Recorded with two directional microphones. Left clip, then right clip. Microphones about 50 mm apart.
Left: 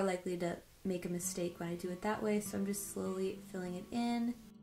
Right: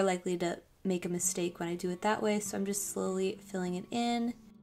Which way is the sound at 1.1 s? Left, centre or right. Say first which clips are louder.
Right 7 dB; centre.